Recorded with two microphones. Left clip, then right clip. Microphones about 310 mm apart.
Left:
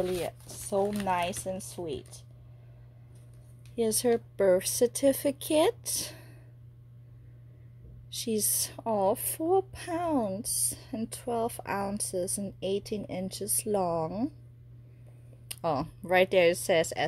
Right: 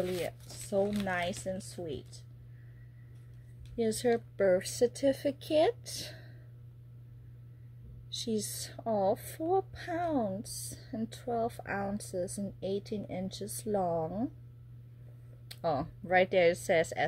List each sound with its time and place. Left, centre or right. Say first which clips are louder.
0.2 s speech: left 2 dB; centre
3.7 s speech: left 3 dB; left
8.3 s speech: left 6 dB; left
15.4 s speech: left 2 dB; left